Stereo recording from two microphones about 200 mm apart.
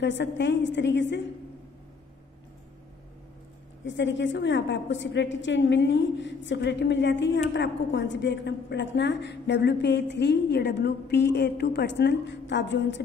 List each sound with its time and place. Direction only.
0.0 s a woman's voice: 65° left (ahead or behind)
3.8 s a woman's voice: 65° left (ahead or behind)